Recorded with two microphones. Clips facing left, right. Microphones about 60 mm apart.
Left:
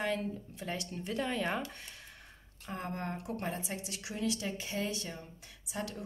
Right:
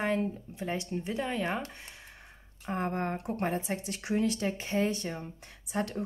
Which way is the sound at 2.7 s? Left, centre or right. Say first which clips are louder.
Right 7 dB; right.